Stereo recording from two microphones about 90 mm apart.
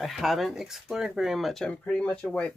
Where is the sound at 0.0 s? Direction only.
Centre (ahead or behind).